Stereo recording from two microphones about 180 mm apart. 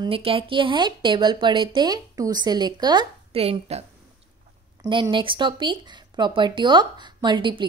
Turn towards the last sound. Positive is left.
turn(degrees=-25)  # may be behind; listen again after turning